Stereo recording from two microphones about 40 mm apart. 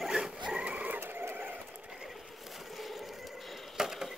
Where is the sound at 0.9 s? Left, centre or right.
Right.